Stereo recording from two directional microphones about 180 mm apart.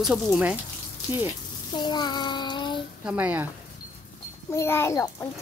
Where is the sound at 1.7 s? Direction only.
25° left (ahead or behind).